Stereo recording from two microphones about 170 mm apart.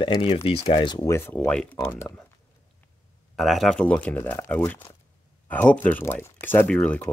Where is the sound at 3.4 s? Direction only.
Centre (ahead or behind).